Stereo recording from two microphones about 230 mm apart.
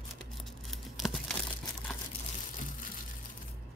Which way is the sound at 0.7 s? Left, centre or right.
Centre.